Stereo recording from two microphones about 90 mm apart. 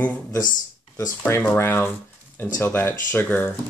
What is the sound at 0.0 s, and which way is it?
Speech, 20° left (ahead or behind).